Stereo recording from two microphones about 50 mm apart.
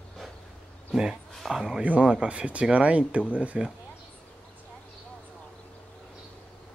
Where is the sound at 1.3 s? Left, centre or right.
Centre.